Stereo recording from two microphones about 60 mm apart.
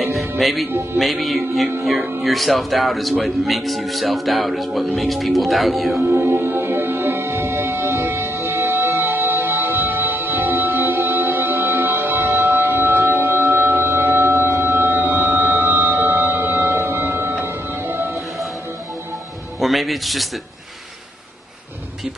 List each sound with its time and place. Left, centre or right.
0.0 s music: centre
0.9 s speech: centre
6.0 s music: right
6.7 s music: right
19.6 s music: centre